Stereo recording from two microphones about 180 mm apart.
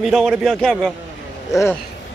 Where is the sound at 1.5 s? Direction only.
15° left (ahead or behind).